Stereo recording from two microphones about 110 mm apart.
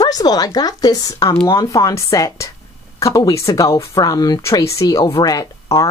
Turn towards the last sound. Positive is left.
turn(degrees=30)  # may be behind; listen again after turning